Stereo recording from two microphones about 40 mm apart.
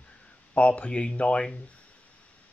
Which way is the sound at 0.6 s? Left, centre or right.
Left.